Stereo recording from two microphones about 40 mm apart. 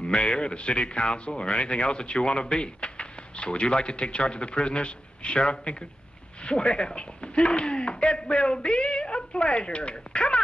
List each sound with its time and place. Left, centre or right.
0.0 s speech: left